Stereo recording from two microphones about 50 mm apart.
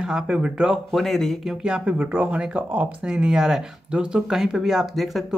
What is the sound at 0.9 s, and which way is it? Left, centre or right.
Speech, centre.